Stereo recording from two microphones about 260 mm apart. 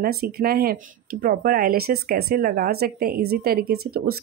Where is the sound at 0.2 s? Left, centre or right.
Right.